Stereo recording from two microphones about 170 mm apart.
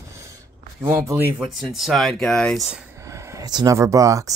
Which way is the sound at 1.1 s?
Centre (ahead or behind).